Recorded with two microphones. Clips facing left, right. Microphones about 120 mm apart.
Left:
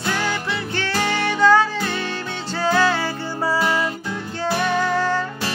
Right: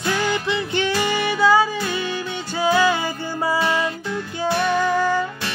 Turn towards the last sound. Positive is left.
turn(degrees=-10)  # may be behind; listen again after turning